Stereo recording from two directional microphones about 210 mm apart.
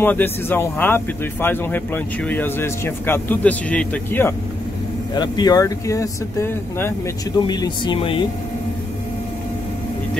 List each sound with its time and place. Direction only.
0.0 s speech: 10° left (ahead or behind)
5.1 s speech: 20° left (ahead or behind)